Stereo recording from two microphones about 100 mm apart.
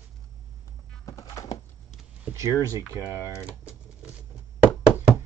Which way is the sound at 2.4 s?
30° right (ahead or behind).